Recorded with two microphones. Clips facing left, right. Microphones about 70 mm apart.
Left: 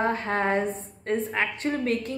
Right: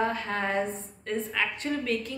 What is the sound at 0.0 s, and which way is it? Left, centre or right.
A woman's voice, left.